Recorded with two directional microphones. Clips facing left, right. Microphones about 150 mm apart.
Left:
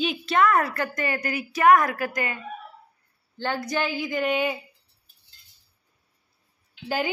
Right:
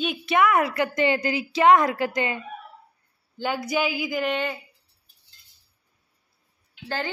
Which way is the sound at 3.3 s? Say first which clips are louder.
Right 2 dB; 10° right (ahead or behind).